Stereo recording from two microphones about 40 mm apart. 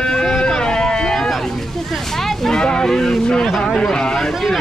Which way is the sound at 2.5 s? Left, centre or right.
Centre.